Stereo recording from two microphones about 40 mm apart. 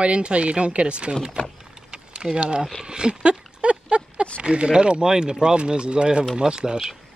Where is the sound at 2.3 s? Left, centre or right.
Right.